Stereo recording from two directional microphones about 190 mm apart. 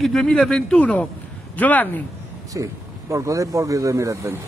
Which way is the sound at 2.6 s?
20° right (ahead or behind).